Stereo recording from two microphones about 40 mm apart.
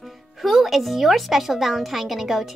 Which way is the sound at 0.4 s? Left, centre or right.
Centre.